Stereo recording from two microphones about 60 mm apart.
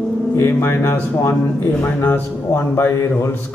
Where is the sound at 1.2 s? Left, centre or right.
Left.